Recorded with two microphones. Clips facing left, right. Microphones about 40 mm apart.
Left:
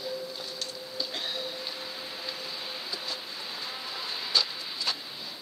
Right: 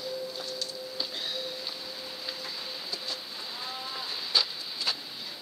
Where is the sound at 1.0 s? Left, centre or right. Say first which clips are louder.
Left 2 dB; centre.